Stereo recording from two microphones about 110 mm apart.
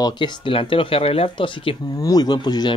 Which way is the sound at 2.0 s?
35° left (ahead or behind).